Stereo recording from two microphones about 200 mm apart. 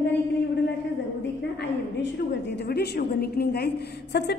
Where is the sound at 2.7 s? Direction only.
50° left (ahead or behind).